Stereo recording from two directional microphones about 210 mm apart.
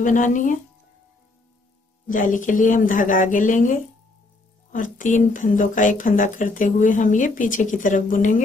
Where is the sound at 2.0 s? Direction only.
40° left (ahead or behind).